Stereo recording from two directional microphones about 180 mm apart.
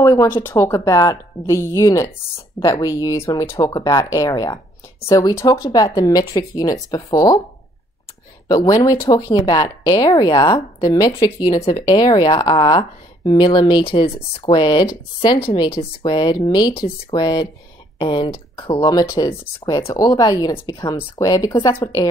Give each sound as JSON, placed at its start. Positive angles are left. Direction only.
{"t": 0.0, "sound": "a woman's voice", "side_deg": 15}
{"t": 8.5, "sound": "a woman's voice", "side_deg": 20}